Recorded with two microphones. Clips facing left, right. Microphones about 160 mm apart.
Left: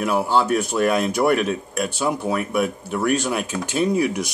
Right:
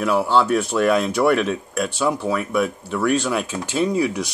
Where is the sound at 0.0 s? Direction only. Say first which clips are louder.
Right 1 dB; 15° left (ahead or behind).